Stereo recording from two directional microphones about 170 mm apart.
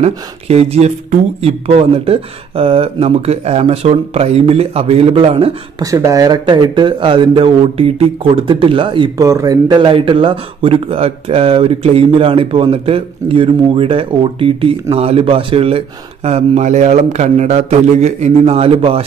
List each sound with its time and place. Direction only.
0.0 s speech: 40° right (ahead or behind)
5.8 s speech: 20° right (ahead or behind); by 19.0 s 35° right (ahead or behind)